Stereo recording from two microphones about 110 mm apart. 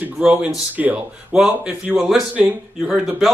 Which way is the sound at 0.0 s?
15° right (ahead or behind).